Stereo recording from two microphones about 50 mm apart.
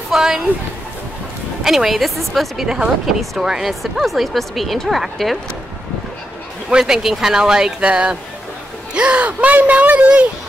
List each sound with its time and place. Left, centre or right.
0.1 s speech: centre
1.6 s a woman's voice: centre
6.8 s speech: centre; by 10.2 s right